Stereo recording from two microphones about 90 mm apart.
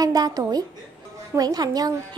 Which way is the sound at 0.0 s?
45° right (ahead or behind).